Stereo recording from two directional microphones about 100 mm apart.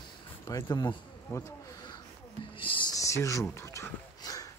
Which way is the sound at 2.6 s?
60° left (ahead or behind).